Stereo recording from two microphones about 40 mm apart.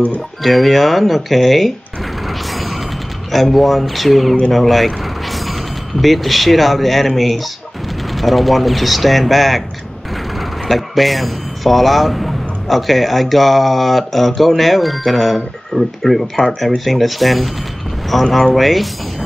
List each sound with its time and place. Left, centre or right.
0.4 s speech: centre
2.2 s mechanisms: centre
3.3 s speech: centre
10.7 s speech: centre